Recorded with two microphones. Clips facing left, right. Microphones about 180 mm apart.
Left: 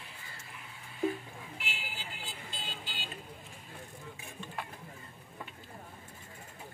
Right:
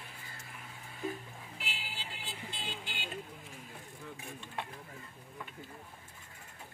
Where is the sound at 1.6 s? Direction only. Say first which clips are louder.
Right 1 dB; 35° right (ahead or behind).